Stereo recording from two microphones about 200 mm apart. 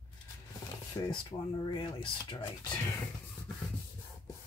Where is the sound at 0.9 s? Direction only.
20° left (ahead or behind).